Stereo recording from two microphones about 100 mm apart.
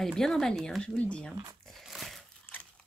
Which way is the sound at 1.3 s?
50° right (ahead or behind).